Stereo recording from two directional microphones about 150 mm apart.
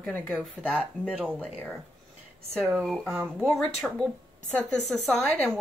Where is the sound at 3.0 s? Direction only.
15° right (ahead or behind).